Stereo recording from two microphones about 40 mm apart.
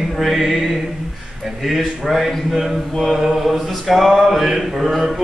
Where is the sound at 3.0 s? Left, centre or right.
Centre.